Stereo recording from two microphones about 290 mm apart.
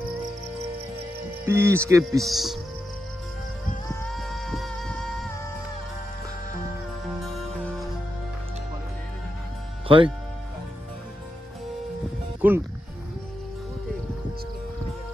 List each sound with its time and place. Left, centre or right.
1.4 s speech: centre
3.9 s music: centre
7.2 s music: centre
9.8 s speech: centre
12.4 s speech: centre